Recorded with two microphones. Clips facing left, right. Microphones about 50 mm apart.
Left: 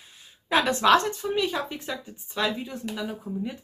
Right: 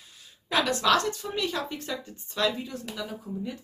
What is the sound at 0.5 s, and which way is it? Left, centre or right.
Speech, left.